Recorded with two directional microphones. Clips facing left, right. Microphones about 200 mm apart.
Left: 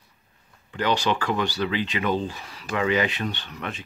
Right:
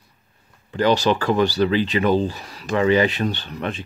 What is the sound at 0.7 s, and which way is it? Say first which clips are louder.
Speech: right 6 dB; 35° right (ahead or behind).